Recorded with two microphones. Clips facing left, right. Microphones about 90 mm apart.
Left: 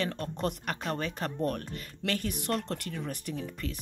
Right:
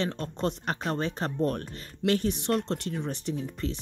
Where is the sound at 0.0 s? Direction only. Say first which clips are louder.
Right 2 dB; 30° right (ahead or behind).